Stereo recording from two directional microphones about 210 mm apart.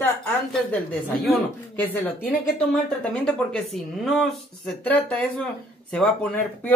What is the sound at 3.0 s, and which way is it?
Speech, 5° left (ahead or behind).